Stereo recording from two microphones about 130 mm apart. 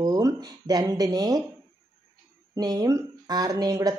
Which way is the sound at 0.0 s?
30° right (ahead or behind).